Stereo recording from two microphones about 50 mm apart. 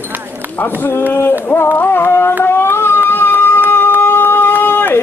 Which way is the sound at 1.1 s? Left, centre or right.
Left.